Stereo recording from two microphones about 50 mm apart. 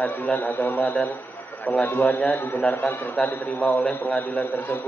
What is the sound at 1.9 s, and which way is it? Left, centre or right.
A man's voice, left.